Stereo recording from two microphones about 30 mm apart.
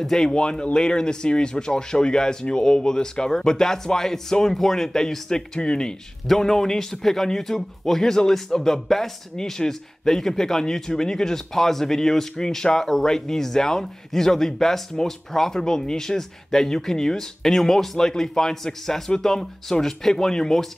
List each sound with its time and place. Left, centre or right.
0.0 s speech: centre
0.3 s speech: left
5.3 s speech: left
6.4 s speech: centre